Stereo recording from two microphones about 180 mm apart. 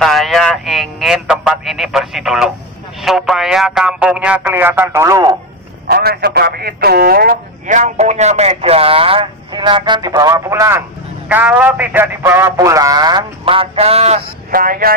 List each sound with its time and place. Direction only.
0.0 s speech: centre (ahead or behind); by 5.4 s 15° right (ahead or behind)
5.9 s speech: 60° right (ahead or behind); by 14.2 s 35° right (ahead or behind)
14.5 s speech: 55° right (ahead or behind)